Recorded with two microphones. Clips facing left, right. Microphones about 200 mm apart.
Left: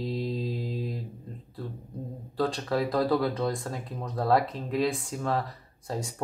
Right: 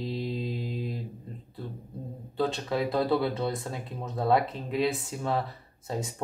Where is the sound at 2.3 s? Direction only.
5° right (ahead or behind).